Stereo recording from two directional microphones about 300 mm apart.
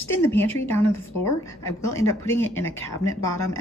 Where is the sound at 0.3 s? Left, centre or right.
Centre.